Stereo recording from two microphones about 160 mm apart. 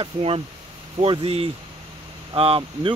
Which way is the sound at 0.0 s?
35° right (ahead or behind).